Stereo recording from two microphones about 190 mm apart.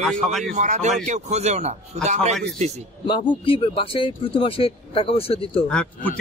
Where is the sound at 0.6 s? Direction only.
40° right (ahead or behind).